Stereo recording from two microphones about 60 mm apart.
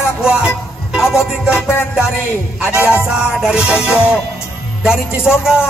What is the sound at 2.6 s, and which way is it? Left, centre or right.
Music, right.